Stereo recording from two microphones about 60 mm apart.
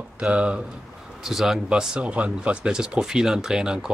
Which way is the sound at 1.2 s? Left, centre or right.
Centre.